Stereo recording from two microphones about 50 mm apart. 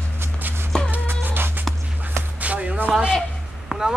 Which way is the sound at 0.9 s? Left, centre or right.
Right.